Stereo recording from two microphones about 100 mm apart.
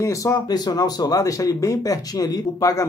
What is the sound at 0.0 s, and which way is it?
Speech, 35° left (ahead or behind).